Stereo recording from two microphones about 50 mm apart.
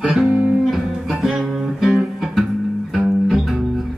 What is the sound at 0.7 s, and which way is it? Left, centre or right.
Music, centre.